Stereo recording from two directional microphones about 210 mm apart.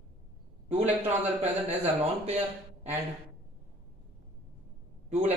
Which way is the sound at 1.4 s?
30° right (ahead or behind).